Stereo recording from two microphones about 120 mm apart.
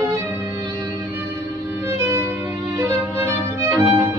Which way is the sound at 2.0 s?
20° right (ahead or behind).